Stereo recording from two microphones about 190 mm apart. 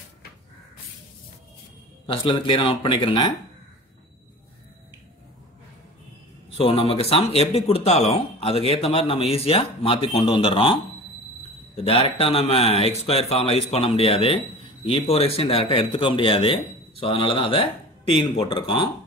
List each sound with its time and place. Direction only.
2.2 s speech: 25° left (ahead or behind)
6.5 s a man's voice: 30° left (ahead or behind)